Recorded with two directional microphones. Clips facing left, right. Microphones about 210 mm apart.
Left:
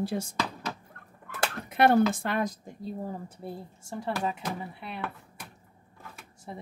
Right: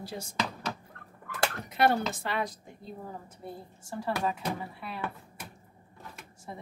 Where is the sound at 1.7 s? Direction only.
50° left (ahead or behind).